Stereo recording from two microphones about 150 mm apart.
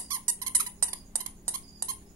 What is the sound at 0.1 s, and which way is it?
Squeak, 20° right (ahead or behind).